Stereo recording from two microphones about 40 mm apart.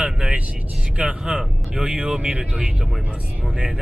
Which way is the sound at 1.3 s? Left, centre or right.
Right.